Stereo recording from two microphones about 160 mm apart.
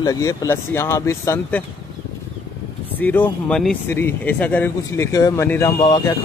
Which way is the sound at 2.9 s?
10° left (ahead or behind).